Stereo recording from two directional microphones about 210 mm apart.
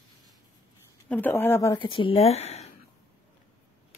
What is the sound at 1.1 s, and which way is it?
Speech, 10° left (ahead or behind).